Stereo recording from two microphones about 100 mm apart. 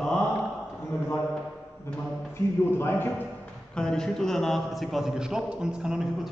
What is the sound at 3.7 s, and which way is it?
A man's voice, 5° left (ahead or behind).